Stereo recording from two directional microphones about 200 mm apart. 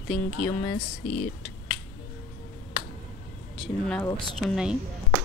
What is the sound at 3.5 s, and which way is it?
Speech, centre (ahead or behind).